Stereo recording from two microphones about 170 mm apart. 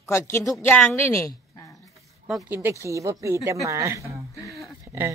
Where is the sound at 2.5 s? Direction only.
15° right (ahead or behind).